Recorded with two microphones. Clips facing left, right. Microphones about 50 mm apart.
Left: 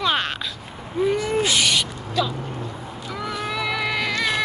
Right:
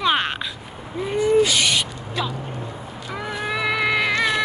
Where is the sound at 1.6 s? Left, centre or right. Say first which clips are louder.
Even; centre.